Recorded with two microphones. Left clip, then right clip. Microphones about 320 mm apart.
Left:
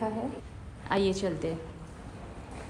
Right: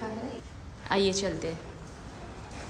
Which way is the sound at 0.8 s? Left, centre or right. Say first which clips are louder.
Right 1 dB; centre.